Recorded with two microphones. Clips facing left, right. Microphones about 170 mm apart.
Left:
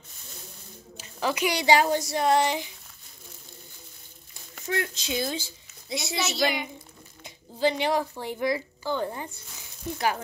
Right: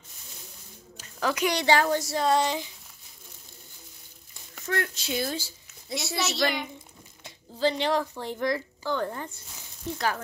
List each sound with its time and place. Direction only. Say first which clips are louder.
0.9 s speech: even; 5° left (ahead or behind)
4.6 s speech: even; 20° left (ahead or behind)
6.1 s a woman's voice: left 1 dB; centre (ahead or behind)
7.2 s a sound: left 1 dB; 15° left (ahead or behind)
8.1 s speech: left 1 dB; 10° left (ahead or behind)